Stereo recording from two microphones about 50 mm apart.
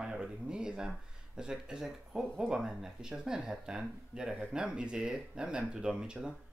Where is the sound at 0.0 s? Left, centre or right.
Centre.